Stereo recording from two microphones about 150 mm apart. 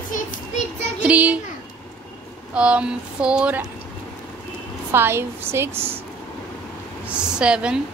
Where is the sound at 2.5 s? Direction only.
10° right (ahead or behind).